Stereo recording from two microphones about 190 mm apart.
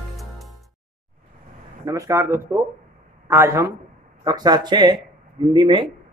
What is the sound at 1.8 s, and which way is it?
Speech, 15° right (ahead or behind).